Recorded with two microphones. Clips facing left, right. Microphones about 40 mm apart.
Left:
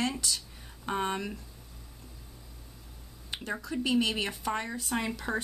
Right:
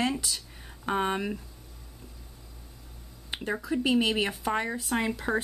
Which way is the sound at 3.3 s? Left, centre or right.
Centre.